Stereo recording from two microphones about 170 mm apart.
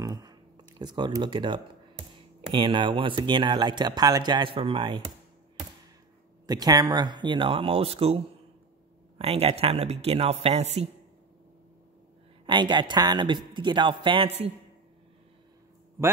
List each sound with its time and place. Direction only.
0.0 s a sound: 25° right (ahead or behind)
2.5 s speech: 30° right (ahead or behind)
6.4 s speech: 20° right (ahead or behind)
9.2 s a man's voice: 35° right (ahead or behind)
12.4 s speech: 25° right (ahead or behind)